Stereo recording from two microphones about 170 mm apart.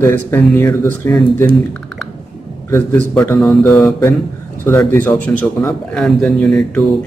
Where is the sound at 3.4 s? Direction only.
5° left (ahead or behind).